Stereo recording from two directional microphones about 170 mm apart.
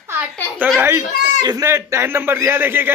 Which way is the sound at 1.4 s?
20° right (ahead or behind).